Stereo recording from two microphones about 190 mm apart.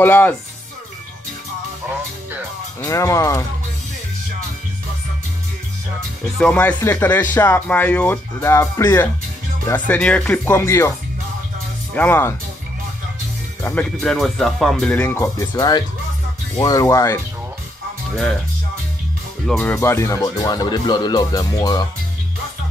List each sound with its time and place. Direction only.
0.0 s speech: 10° left (ahead or behind)
2.8 s speech: 15° left (ahead or behind)
6.4 s speech: 5° left (ahead or behind)
11.9 s speech: 10° left (ahead or behind)
13.6 s speech: 5° left (ahead or behind)
15.1 s speech: 20° left (ahead or behind)
19.4 s speech: 10° left (ahead or behind)